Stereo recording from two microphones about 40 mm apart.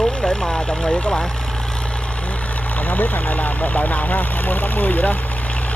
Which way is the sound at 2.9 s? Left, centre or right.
Left.